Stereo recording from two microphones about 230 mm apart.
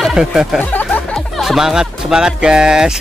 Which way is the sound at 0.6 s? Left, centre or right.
Centre.